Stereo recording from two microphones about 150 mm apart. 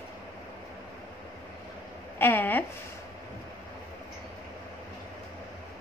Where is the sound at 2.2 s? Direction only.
10° left (ahead or behind).